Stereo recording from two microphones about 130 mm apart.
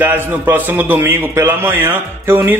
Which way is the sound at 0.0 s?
15° right (ahead or behind).